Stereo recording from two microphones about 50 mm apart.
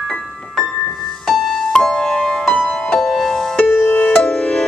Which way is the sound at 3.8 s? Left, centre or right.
Left.